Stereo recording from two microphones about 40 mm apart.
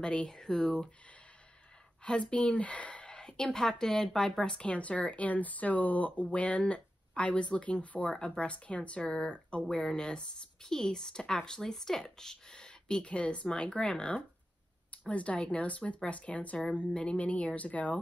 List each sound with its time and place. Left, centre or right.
0.0 s speech: left
2.0 s speech: left
4.6 s speech: left
9.0 s speech: centre; by 17.9 s left